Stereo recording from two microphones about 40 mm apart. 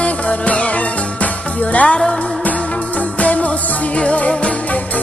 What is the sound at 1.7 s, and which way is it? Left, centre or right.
Music, left.